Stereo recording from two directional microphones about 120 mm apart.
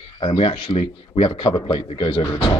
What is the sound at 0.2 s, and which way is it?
Speech, 50° left (ahead or behind).